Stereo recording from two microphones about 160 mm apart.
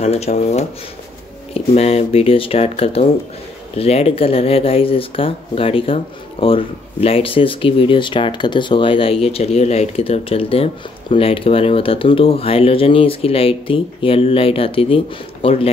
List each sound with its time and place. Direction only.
0.0 s speech: 40° left (ahead or behind)